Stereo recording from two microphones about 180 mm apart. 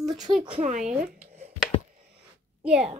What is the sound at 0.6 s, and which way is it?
Speech, 40° right (ahead or behind).